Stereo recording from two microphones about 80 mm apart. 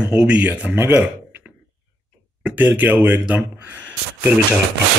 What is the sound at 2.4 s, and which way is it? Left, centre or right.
Speech, centre.